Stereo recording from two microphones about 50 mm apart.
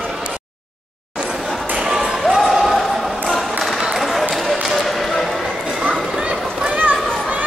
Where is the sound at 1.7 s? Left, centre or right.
Centre.